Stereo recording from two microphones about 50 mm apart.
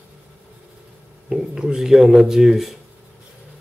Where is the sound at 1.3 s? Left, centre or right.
Centre.